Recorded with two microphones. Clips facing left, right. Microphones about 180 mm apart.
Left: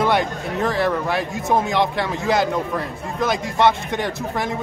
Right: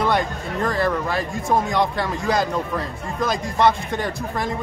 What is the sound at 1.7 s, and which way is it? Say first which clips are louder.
Speech: left 1 dB; 25° left (ahead or behind).